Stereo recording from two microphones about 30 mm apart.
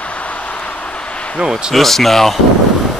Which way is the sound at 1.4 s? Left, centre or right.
Right.